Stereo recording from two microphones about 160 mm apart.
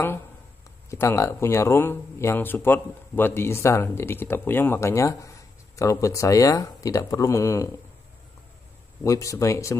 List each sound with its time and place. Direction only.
0.8 s speech: 20° left (ahead or behind)
9.0 s speech: 20° left (ahead or behind)